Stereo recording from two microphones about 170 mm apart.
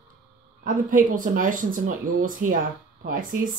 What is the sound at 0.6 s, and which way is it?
Speech, 50° right (ahead or behind).